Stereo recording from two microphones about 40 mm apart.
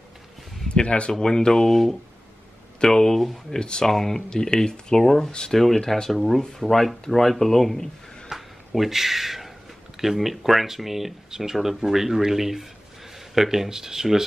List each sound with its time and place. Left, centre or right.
0.7 s speech: left
1.2 s speech: centre
2.8 s speech: centre
3.5 s speech: left
3.8 s speech: centre
5.6 s speech: centre
8.3 s a sound: centre
9.9 s speech: centre